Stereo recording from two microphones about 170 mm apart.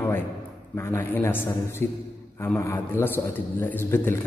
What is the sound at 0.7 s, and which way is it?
A man's voice, 15° left (ahead or behind).